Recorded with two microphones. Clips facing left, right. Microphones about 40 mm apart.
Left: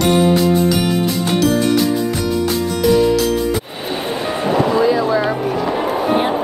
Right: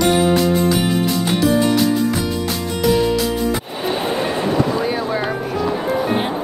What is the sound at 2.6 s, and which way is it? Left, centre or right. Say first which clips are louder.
Music: left 2 dB; centre.